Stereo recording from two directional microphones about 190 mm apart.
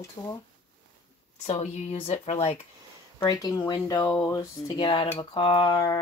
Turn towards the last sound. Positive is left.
turn(degrees=20)  # may be behind; listen again after turning